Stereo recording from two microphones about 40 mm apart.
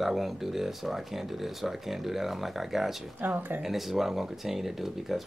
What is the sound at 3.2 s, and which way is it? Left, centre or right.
Speech, right.